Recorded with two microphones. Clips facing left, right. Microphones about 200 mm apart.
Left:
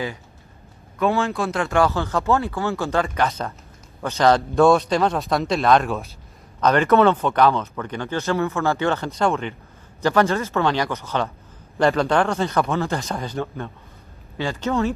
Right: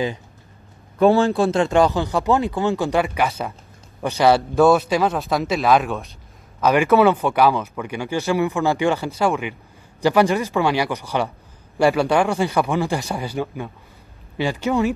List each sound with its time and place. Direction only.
0.9 s speech: 35° right (ahead or behind); by 14.9 s 10° right (ahead or behind)